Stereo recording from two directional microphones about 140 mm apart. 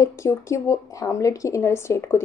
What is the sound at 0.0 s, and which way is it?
A woman's voice, 20° left (ahead or behind).